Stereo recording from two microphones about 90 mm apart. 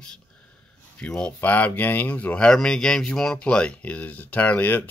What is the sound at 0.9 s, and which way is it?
Speech, 10° left (ahead or behind).